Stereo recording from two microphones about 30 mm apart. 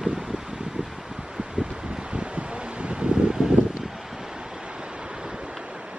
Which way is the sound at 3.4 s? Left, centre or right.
Right.